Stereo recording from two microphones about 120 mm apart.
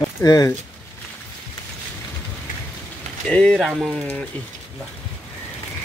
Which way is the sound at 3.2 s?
5° left (ahead or behind).